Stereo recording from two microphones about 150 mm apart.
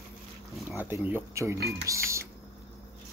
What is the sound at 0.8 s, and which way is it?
Speech, 10° right (ahead or behind).